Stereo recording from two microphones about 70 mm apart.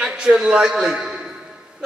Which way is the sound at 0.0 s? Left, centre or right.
Centre.